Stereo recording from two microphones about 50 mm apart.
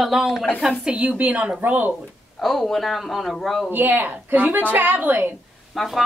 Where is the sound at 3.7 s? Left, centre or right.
Right.